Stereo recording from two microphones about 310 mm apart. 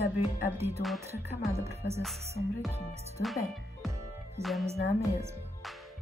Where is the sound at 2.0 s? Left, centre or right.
Centre.